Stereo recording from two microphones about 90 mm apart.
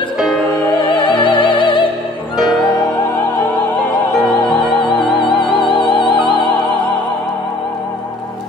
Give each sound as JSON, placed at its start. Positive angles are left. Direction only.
{"t": 0.8, "sound": "music", "side_deg": 60}
{"t": 4.2, "sound": "music", "side_deg": 5}
{"t": 5.9, "sound": "music", "side_deg": 60}